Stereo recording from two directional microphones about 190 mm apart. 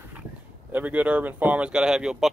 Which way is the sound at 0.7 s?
10° right (ahead or behind).